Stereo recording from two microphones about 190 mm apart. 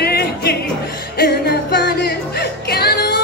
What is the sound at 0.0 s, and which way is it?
Music, 55° left (ahead or behind).